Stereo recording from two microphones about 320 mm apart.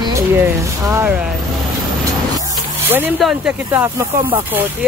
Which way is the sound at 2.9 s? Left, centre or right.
Centre.